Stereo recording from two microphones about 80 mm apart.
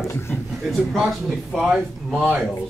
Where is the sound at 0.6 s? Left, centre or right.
Centre.